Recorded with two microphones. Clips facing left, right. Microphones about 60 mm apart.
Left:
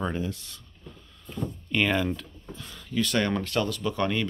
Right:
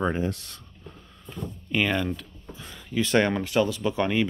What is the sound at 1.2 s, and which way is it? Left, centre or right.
Speech, centre.